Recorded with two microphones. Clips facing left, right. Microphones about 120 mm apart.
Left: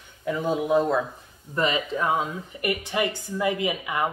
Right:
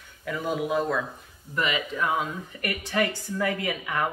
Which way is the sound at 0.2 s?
25° left (ahead or behind).